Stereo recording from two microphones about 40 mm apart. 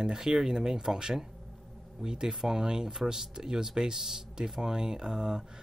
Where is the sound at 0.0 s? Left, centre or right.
Centre.